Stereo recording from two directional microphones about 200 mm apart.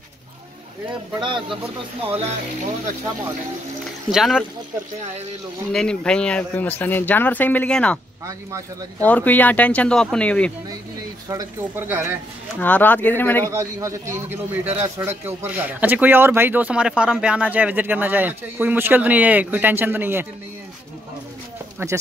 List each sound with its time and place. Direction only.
1.2 s speech: 25° right (ahead or behind)
4.1 s speech: centre (ahead or behind)
5.7 s speech: 5° left (ahead or behind)
8.3 s a man's voice: 15° right (ahead or behind)
9.0 s speech: 10° left (ahead or behind)
11.2 s a man's voice: 15° right (ahead or behind)
12.5 s speech: 5° left (ahead or behind)
13.5 s a man's voice: 15° right (ahead or behind)